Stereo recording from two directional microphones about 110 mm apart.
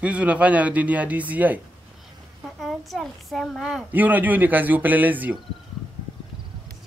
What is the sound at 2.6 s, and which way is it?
A child's voice, centre (ahead or behind).